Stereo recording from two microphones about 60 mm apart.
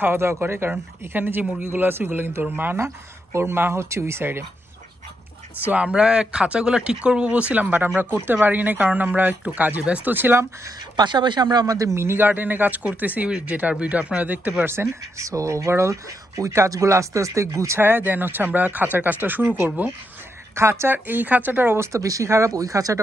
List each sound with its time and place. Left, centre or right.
0.0 s speech: right
3.3 s speech: right
5.7 s speech: right
11.6 s speech: right
11.9 s speech: right
12.2 s speech: right
14.6 s speech: right
15.2 s speech: right
17.7 s speech: right
20.5 s speech: right
20.9 s speech: right
21.9 s speech: right